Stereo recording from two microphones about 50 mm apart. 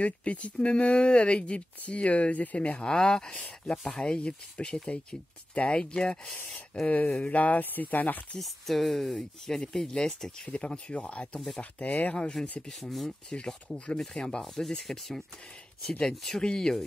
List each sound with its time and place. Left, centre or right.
0.0 s speech: left
8.4 s speech: centre
10.4 s speech: left
13.7 s speech: left